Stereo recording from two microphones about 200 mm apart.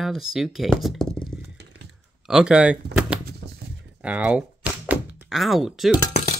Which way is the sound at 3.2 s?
55° right (ahead or behind).